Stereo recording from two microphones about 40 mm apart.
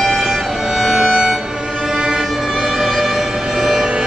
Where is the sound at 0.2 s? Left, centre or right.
Right.